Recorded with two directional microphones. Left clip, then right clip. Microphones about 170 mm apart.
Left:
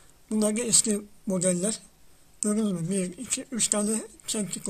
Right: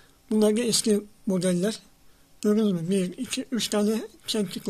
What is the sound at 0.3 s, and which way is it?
Speech, 25° right (ahead or behind).